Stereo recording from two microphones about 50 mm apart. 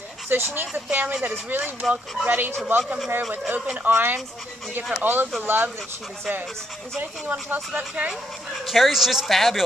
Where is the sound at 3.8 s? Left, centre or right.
Right.